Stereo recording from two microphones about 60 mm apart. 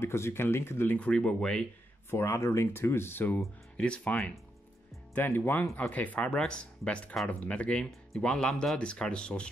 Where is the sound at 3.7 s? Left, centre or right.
Left.